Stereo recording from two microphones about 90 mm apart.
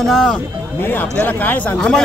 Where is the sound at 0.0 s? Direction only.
5° left (ahead or behind).